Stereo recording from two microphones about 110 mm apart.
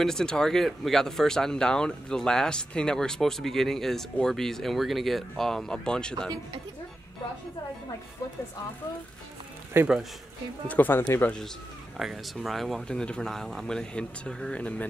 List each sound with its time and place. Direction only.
0.0 s speech: 5° left (ahead or behind)
9.8 s speech: 20° right (ahead or behind)
10.7 s speech: 15° left (ahead or behind)
12.0 s speech: centre (ahead or behind)